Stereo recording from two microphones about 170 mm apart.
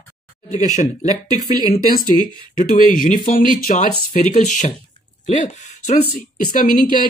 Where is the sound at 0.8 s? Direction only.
40° left (ahead or behind).